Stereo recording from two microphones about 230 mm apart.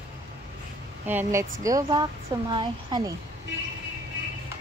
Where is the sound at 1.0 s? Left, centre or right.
Centre.